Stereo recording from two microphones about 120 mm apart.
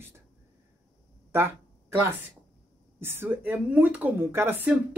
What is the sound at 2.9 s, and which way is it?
A woman's voice, 20° right (ahead or behind).